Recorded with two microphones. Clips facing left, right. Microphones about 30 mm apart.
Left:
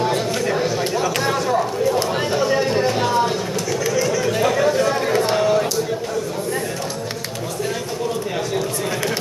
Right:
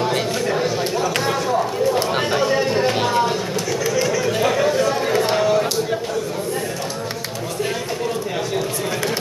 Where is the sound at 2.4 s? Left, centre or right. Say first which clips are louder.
Left 1 dB; centre.